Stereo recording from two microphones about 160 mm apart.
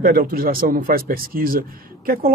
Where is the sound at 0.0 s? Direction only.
65° right (ahead or behind).